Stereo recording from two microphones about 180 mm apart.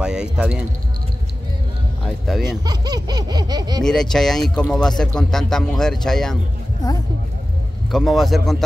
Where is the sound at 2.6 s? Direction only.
20° right (ahead or behind).